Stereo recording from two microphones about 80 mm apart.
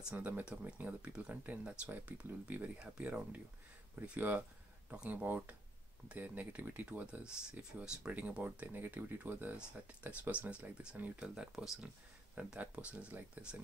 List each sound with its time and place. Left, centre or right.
0.1 s speech: right; by 11.9 s centre
12.4 s speech: centre